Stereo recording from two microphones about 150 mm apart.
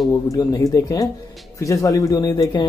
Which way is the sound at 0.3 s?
25° left (ahead or behind).